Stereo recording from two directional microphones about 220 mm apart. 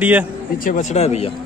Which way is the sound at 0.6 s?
30° left (ahead or behind).